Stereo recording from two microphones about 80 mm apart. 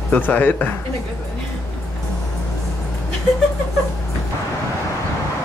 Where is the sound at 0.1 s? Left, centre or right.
Left.